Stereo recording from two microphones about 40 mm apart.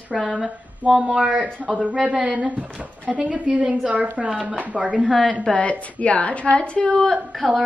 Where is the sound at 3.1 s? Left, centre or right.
Right.